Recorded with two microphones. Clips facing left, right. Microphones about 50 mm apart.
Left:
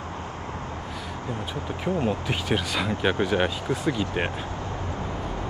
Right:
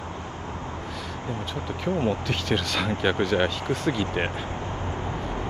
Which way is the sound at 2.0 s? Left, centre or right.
Centre.